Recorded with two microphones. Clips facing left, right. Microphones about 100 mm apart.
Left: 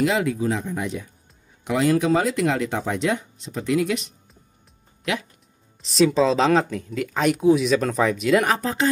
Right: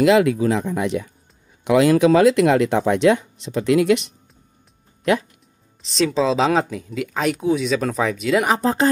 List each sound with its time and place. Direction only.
0.0 s speech: 80° right
5.8 s speech: 5° left (ahead or behind)